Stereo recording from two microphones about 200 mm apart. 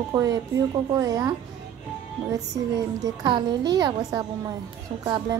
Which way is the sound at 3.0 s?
25° right (ahead or behind).